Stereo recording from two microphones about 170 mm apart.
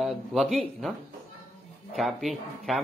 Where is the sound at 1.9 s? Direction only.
Centre (ahead or behind).